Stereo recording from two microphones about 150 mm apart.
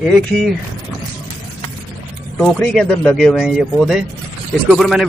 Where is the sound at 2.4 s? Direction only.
5° left (ahead or behind).